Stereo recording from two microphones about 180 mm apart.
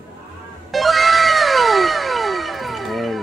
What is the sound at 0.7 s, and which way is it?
Cat, centre (ahead or behind).